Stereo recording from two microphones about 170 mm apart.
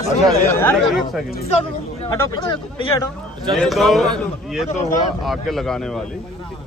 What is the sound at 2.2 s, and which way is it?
Speech, 20° left (ahead or behind).